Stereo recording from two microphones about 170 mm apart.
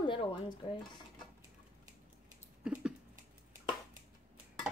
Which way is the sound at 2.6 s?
5° right (ahead or behind).